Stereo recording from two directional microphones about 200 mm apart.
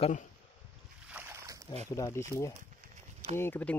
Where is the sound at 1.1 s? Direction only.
10° right (ahead or behind).